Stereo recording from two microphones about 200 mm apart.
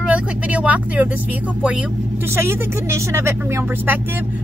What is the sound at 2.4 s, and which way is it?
Speech, 15° right (ahead or behind).